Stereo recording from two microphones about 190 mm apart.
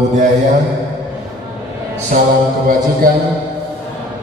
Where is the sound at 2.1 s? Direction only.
45° right (ahead or behind).